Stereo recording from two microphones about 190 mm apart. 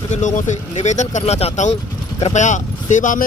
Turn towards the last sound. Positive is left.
turn(degrees=45)  # may be behind; listen again after turning